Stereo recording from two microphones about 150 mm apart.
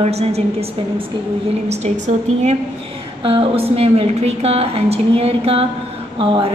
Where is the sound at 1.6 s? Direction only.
50° right (ahead or behind).